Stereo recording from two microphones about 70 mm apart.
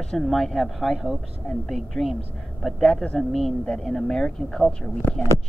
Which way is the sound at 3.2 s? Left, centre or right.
Centre.